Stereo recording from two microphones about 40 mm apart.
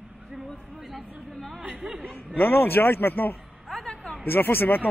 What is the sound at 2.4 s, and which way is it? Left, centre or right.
Speech, left.